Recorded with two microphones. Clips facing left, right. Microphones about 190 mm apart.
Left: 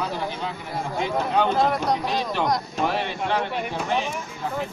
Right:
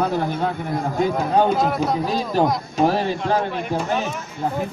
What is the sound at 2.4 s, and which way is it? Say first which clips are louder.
Speech: right 8 dB; 40° right (ahead or behind).